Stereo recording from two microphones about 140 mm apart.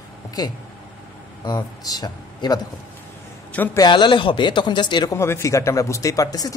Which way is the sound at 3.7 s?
30° left (ahead or behind).